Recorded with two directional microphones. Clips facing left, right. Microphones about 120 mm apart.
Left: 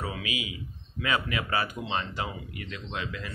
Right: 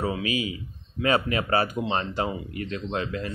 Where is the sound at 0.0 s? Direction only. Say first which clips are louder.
Right 7 dB; 35° right (ahead or behind).